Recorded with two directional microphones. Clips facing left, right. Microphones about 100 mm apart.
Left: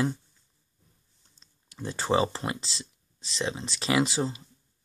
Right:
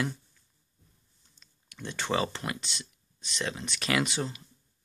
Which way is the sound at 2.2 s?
25° left (ahead or behind).